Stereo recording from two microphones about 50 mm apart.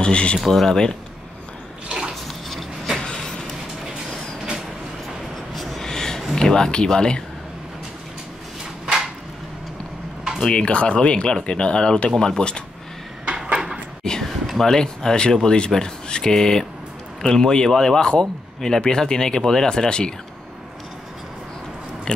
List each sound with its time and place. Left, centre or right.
0.0 s speech: left
0.4 s speech: centre
1.9 s bathtub: centre
3.0 s vehicle: centre
5.3 s a sound: centre
6.3 s speech: centre
10.4 s speech: left
13.4 s a sound: centre
14.0 s speech: centre